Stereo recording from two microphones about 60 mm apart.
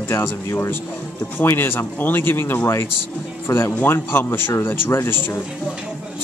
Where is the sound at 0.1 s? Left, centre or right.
Left.